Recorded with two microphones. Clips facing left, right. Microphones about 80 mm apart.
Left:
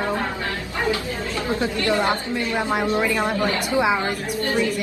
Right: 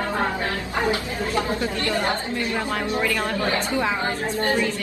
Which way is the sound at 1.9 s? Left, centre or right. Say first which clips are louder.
Left 3 dB; left.